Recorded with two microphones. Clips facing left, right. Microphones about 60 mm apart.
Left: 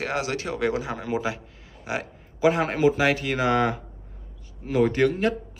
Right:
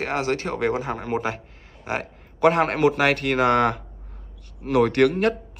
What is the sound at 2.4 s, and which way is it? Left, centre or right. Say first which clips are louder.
Speech: right 3 dB; right.